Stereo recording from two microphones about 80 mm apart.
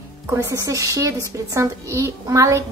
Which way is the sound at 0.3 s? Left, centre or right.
Right.